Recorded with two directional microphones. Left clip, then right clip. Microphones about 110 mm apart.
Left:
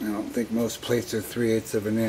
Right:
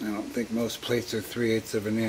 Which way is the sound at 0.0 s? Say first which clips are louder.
Left 3 dB; centre (ahead or behind).